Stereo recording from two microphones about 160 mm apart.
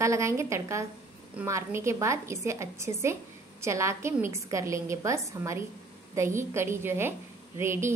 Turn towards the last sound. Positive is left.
turn(degrees=-15)  # may be behind; listen again after turning